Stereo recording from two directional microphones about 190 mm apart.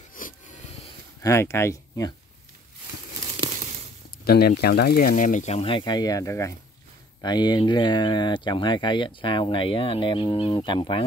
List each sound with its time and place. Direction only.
0.1 s a sound: 45° left (ahead or behind)
1.2 s speech: 15° left (ahead or behind)
4.2 s speech: 55° left (ahead or behind); by 11.1 s 25° left (ahead or behind)